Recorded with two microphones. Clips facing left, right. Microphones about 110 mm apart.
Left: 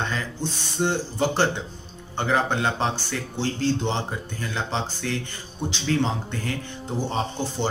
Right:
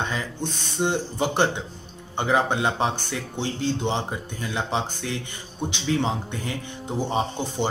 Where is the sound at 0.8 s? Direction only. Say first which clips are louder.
Left 1 dB; 20° right (ahead or behind).